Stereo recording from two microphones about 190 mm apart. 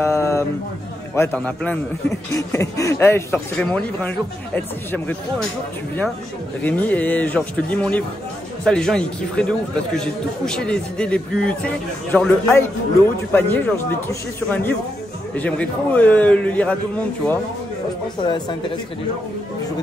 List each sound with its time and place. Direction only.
0.0 s a sound: 15° left (ahead or behind)
1.1 s speech: 10° left (ahead or behind)
6.6 s a man's voice: 10° left (ahead or behind)